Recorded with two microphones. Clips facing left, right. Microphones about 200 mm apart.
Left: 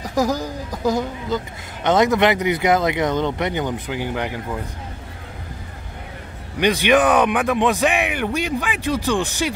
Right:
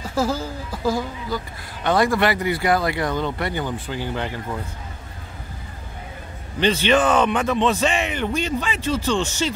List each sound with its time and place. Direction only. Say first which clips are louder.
0.0 s speech: left 2 dB; 15° left (ahead or behind)
6.6 s speech: left 2 dB; 15° left (ahead or behind)